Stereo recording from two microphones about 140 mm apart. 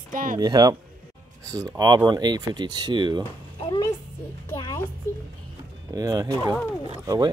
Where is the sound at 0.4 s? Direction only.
30° right (ahead or behind).